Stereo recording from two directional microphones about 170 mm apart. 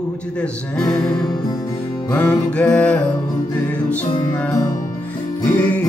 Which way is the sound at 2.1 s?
10° left (ahead or behind).